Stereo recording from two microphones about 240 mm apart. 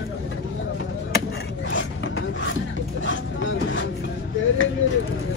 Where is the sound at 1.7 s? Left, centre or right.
Left.